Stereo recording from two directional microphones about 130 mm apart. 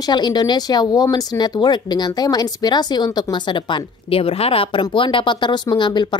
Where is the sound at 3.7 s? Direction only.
45° left (ahead or behind).